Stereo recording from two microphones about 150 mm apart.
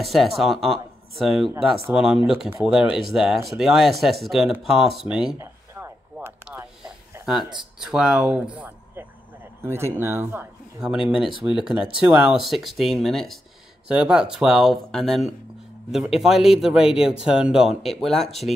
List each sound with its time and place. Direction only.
0.0 s speech: centre (ahead or behind)
5.4 s a sound: 20° right (ahead or behind)
7.8 s speech: 5° right (ahead or behind)
11.1 s speech: 5° right (ahead or behind)